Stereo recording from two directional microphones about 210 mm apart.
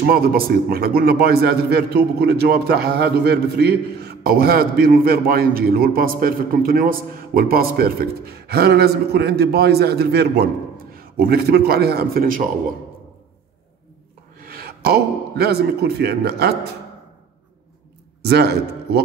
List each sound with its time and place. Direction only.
0.0 s a man's voice: 45° right (ahead or behind)
14.4 s a man's voice: 45° right (ahead or behind)
18.2 s a man's voice: 50° right (ahead or behind)